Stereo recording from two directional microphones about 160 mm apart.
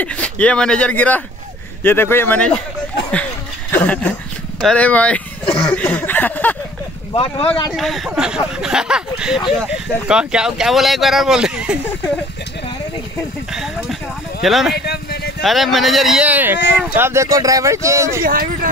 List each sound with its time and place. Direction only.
0.0 s speech: 10° left (ahead or behind)
3.7 s speech: 10° left (ahead or behind)
7.2 s speech: 35° left (ahead or behind)
7.7 s speech: centre (ahead or behind)
13.5 s speech: 5° right (ahead or behind)
14.9 s a sound: 85° left
15.4 s speech: centre (ahead or behind); by 18.2 s 20° right (ahead or behind)
18.2 s speech: 65° right (ahead or behind)